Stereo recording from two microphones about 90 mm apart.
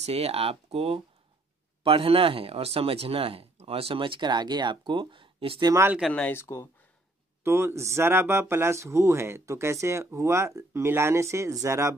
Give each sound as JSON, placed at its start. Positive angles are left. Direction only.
{"t": 0.3, "sound": "speech", "side_deg": -90}
{"t": 6.0, "sound": "speech", "side_deg": -5}
{"t": 6.4, "sound": "speech", "side_deg": 30}
{"t": 7.4, "sound": "speech", "side_deg": -30}